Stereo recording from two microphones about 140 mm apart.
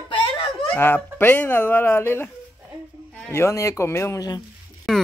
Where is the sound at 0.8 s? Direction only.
15° left (ahead or behind).